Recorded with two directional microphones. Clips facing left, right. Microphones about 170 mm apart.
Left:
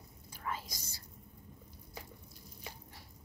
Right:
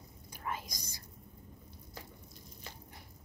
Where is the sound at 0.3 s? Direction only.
15° right (ahead or behind).